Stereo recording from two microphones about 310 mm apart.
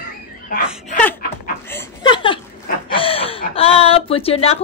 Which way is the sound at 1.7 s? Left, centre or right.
Centre.